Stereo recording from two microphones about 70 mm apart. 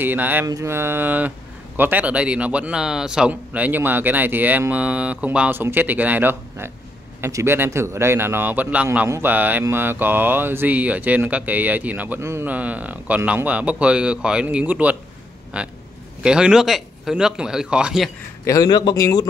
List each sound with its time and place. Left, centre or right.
0.0 s a man's voice: right
5.5 s a man's voice: right
7.2 s a man's voice: right
12.2 s speech: right
12.4 s a man's voice: right
18.4 s a man's voice: left
18.7 s speech: left